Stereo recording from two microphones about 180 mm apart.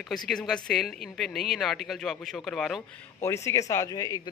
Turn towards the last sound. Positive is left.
turn(degrees=20)  # may be behind; listen again after turning